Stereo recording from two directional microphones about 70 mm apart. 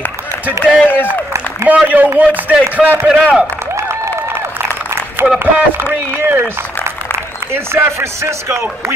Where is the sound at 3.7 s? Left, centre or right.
Right.